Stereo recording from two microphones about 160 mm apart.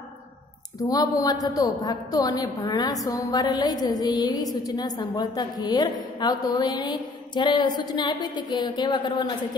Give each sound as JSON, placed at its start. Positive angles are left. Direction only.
{"t": 0.8, "sound": "a woman's voice", "side_deg": 25}